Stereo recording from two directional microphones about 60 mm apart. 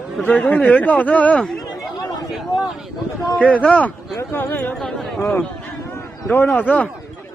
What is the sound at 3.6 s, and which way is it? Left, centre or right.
Speech, centre.